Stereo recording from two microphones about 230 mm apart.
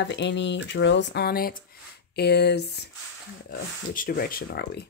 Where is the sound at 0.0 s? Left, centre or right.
Left.